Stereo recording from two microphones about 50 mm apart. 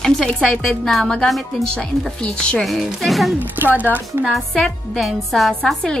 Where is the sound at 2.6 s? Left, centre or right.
Centre.